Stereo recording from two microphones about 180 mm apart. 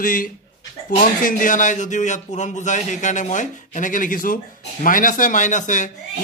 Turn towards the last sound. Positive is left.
turn(degrees=45)  # may be behind; listen again after turning